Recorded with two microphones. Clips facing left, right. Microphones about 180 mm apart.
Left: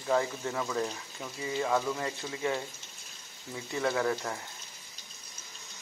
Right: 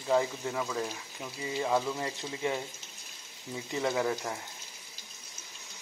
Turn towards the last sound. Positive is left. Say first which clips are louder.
# even
turn(degrees=-10)  # may be behind; listen again after turning